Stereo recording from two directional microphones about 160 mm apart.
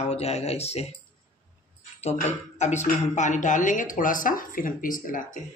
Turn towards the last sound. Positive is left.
turn(degrees=60)  # may be behind; listen again after turning